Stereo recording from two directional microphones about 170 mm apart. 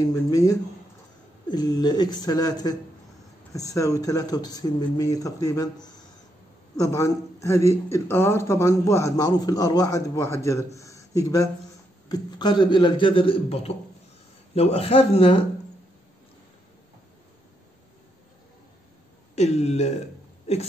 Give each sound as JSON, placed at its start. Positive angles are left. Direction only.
{"t": 0.1, "sound": "a man's voice", "side_deg": 20}
{"t": 19.3, "sound": "speech", "side_deg": 40}